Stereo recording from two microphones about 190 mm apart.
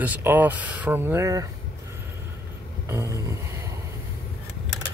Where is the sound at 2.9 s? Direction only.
15° right (ahead or behind).